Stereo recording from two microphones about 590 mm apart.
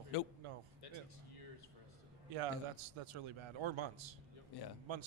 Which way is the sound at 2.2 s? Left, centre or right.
Right.